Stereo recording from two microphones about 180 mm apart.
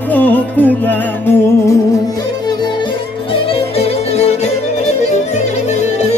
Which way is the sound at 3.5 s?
35° left (ahead or behind).